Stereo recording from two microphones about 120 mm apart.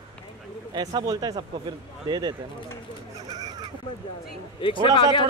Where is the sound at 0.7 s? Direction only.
35° right (ahead or behind).